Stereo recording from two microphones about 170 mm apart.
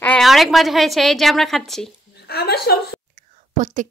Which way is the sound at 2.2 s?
70° left (ahead or behind).